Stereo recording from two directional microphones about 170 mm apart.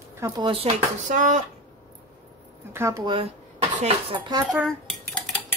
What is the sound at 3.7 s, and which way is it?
Speech, 40° right (ahead or behind).